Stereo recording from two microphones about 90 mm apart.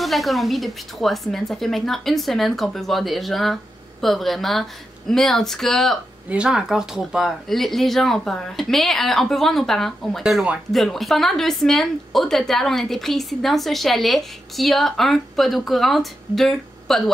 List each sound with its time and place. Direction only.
0.0 s a woman's voice: centre (ahead or behind)
6.2 s a woman's voice: 10° right (ahead or behind)